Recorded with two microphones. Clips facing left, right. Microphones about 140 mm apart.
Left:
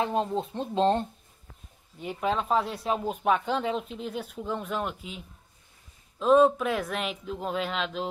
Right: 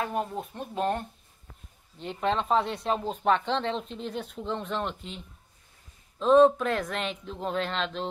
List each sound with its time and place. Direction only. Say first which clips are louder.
0.0 s speech: left 3 dB; 25° left (ahead or behind)
2.0 s speech: even; 5° left (ahead or behind)